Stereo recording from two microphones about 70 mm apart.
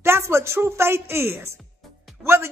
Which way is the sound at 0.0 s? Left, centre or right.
Right.